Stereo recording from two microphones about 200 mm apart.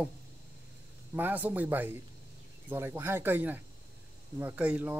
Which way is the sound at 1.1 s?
10° right (ahead or behind).